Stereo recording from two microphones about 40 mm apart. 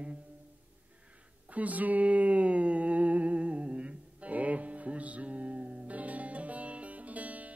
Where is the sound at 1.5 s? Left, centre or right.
Right.